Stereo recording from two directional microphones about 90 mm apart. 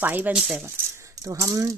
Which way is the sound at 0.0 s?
20° right (ahead or behind).